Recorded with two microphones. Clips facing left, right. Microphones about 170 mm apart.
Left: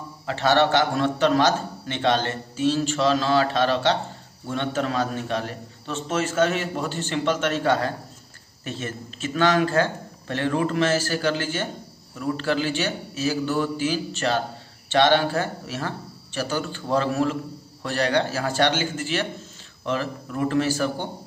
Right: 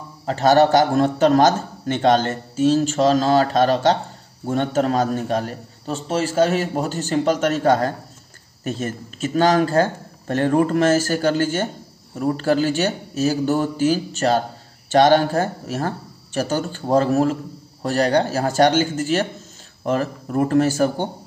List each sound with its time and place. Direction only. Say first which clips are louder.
0.3 s a man's voice: right 5 dB; 40° right (ahead or behind)